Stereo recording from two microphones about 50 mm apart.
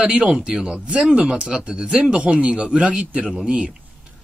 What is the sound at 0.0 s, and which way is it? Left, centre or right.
Speech, centre.